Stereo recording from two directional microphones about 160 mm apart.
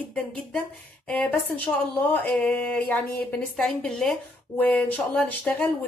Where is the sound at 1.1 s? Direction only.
10° left (ahead or behind).